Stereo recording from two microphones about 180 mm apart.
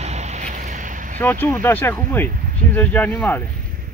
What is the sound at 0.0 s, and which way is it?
Boat, 40° right (ahead or behind).